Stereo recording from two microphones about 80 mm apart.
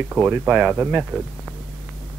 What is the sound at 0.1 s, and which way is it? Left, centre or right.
Speech, right.